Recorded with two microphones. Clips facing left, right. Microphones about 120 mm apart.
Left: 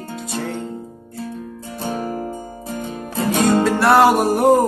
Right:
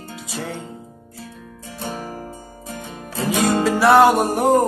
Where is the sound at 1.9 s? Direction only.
50° left (ahead or behind).